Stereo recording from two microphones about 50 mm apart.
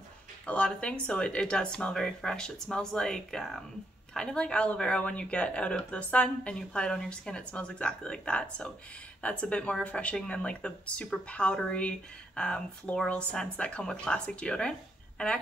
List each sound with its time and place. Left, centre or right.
0.7 s speech: left